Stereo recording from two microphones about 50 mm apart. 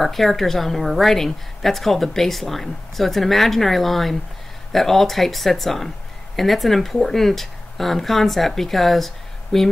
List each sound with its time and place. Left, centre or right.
0.0 s a woman's voice: centre